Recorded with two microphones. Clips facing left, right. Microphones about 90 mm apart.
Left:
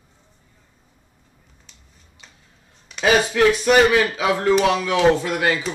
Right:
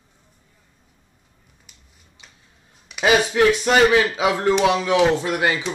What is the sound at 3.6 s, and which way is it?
Speech, 25° right (ahead or behind).